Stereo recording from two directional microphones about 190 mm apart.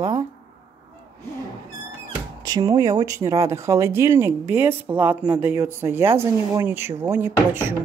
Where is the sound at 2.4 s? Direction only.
20° right (ahead or behind).